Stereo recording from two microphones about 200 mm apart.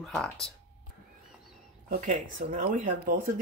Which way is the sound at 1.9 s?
45° right (ahead or behind).